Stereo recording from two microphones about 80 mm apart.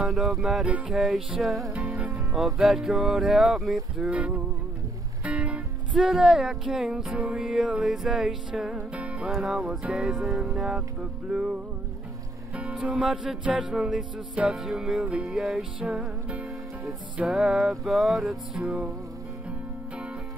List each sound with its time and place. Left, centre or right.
0.1 s music: centre
1.7 s music: centre
2.3 s music: centre
4.1 s music: centre
5.9 s music: centre
11.2 s music: centre
12.7 s music: centre